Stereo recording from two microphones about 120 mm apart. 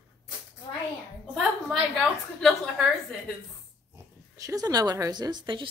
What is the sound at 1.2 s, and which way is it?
A woman's voice, 5° left (ahead or behind).